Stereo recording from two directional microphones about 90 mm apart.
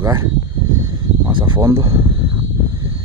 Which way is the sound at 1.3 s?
60° right (ahead or behind).